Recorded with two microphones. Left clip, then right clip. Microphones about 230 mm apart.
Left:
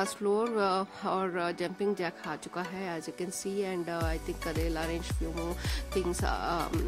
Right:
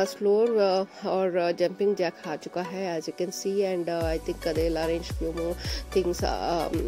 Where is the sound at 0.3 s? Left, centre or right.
Left.